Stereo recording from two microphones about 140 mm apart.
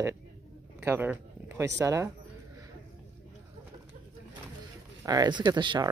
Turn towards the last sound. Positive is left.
turn(degrees=-30)  # may be behind; listen again after turning